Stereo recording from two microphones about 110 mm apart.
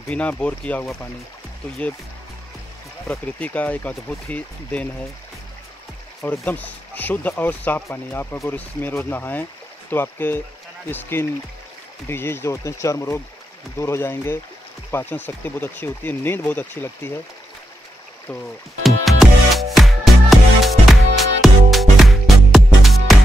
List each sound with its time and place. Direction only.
0.1 s speech: 10° left (ahead or behind)
3.1 s speech: 15° left (ahead or behind)
6.4 s speech: 15° left (ahead or behind)
18.9 s music: centre (ahead or behind)